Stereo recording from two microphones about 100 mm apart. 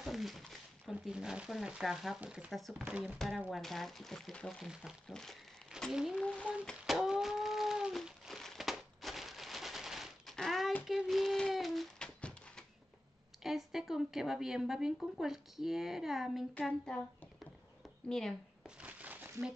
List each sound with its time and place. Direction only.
0.0 s speech: centre (ahead or behind)
3.4 s speech: 5° left (ahead or behind)
6.1 s speech: 10° left (ahead or behind)
6.6 s a sound: centre (ahead or behind)
12.2 s a sound: 10° left (ahead or behind)
13.4 s speech: 5° right (ahead or behind)
16.6 s speech: 10° left (ahead or behind)
18.0 s speech: 5° left (ahead or behind)
18.8 s a sound: 15° right (ahead or behind)